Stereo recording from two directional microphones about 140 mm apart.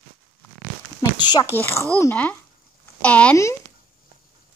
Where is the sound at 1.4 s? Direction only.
15° left (ahead or behind).